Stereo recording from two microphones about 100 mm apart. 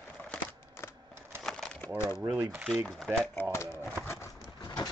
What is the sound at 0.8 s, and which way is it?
Typewriter, 25° left (ahead or behind).